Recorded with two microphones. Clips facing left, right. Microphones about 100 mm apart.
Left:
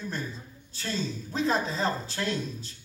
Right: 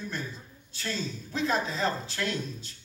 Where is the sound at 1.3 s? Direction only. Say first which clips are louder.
Left 1 dB; 35° left (ahead or behind).